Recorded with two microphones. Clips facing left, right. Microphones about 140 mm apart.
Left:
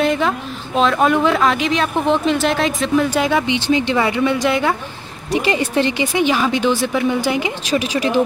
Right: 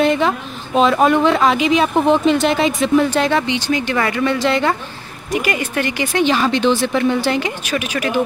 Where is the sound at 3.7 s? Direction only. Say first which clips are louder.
Left 2 dB; 20° left (ahead or behind).